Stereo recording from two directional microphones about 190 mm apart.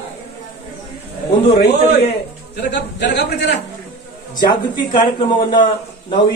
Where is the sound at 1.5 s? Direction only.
60° left (ahead or behind).